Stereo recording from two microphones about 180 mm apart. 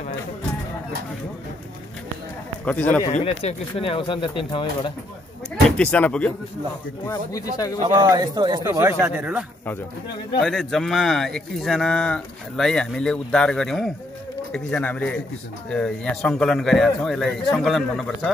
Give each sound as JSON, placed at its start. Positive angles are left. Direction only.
{"t": 2.6, "sound": "speech", "side_deg": 10}
{"t": 3.1, "sound": "speech", "side_deg": 40}
{"t": 5.8, "sound": "speech", "side_deg": 10}
{"t": 7.8, "sound": "a man's voice", "side_deg": -20}
{"t": 10.4, "sound": "speech", "side_deg": 0}